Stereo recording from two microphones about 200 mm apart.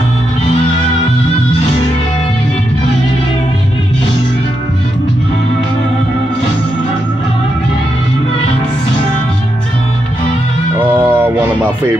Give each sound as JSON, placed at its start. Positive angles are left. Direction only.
{"t": 10.8, "sound": "music", "side_deg": -10}